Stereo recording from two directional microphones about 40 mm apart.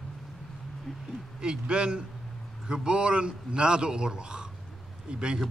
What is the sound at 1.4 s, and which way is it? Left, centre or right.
A man's voice, right.